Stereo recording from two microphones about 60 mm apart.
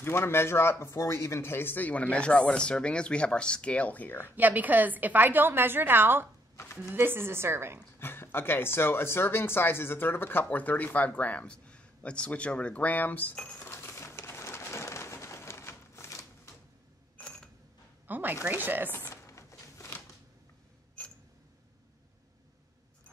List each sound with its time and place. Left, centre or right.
0.0 s speech: left
4.4 s a woman's voice: right
6.5 s a sound: left
6.8 s a woman's voice: right
8.0 s speech: left
13.6 s bird: left
17.2 s mechanisms: centre
18.0 s a woman's voice: right
19.0 s a sound: left
21.0 s clock: centre